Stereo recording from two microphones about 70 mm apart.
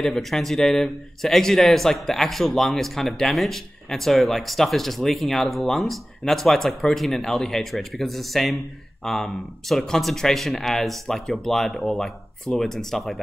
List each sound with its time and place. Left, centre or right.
0.0 s a man's voice: centre